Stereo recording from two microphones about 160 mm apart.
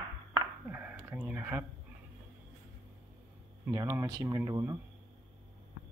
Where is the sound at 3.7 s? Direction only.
20° right (ahead or behind).